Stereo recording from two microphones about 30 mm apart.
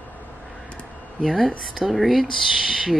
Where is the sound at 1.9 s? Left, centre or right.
Centre.